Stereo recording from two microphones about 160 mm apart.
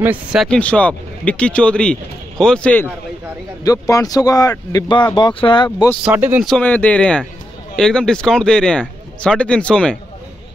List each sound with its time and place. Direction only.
0.0 s speech: 10° right (ahead or behind); by 2.9 s 10° left (ahead or behind)
3.6 s a man's voice: 20° left (ahead or behind)
6.0 s speech: 10° right (ahead or behind)
6.4 s speech: 5° left (ahead or behind)